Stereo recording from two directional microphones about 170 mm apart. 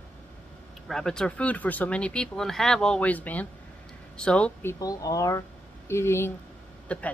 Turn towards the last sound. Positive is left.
turn(degrees=5)  # may be behind; listen again after turning